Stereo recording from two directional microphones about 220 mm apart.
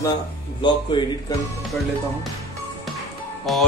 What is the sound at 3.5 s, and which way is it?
Speech, centre (ahead or behind).